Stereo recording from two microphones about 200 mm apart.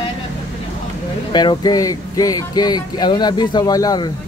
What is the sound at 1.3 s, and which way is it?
Speech, 20° left (ahead or behind).